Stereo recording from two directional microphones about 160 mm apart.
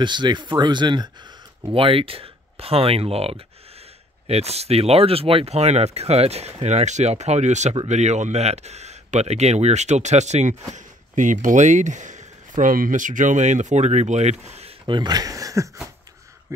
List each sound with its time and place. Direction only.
0.0 s speech: 30° right (ahead or behind); by 10.5 s 45° right (ahead or behind)
10.7 s a sound: 50° right (ahead or behind)
11.4 s speech: 50° right (ahead or behind)
14.9 s speech: 25° right (ahead or behind)